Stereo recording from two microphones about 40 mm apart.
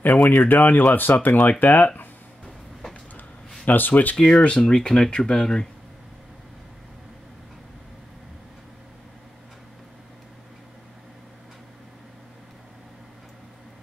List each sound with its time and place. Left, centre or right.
0.0 s speech: left
3.6 s speech: left
4.2 s speech: left